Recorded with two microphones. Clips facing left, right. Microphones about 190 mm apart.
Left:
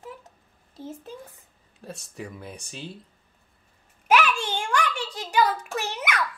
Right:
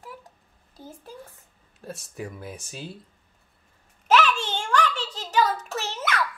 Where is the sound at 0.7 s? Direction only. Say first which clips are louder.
Left 5 dB; 25° left (ahead or behind).